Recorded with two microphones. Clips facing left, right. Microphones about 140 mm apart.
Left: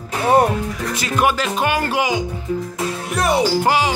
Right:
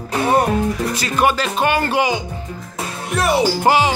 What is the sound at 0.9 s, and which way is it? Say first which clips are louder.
Music: left 1 dB; 10° left (ahead or behind).